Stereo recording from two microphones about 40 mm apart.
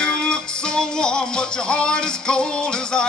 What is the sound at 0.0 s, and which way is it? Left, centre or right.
Music, left.